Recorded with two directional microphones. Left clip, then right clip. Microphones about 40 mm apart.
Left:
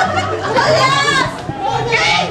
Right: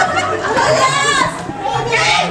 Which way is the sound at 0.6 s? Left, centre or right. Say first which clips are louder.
Left 1 dB; right.